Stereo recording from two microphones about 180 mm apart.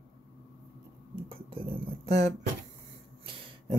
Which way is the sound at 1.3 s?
30° right (ahead or behind).